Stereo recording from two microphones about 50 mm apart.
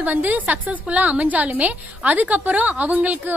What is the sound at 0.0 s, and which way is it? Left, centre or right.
A woman's voice, right.